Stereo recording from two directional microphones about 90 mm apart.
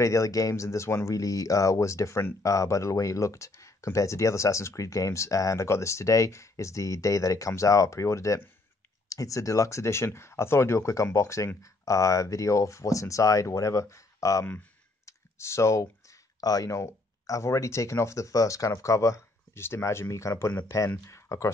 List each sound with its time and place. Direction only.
0.0 s speech: 35° left (ahead or behind)